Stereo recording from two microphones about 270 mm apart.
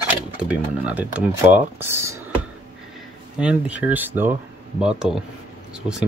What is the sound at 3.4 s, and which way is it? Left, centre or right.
Speech, centre.